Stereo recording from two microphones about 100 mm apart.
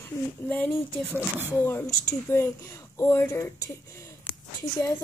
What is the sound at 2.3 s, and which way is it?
Speech, 25° left (ahead or behind).